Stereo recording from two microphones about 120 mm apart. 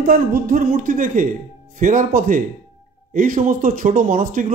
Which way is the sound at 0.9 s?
90° right.